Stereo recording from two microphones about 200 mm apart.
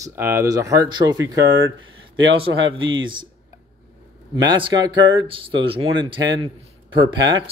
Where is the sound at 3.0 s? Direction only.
25° right (ahead or behind).